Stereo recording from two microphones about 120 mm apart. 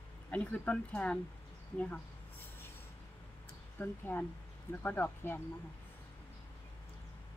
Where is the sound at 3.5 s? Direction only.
15° left (ahead or behind).